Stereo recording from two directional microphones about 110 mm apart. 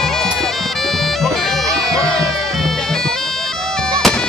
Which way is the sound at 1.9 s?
5° left (ahead or behind).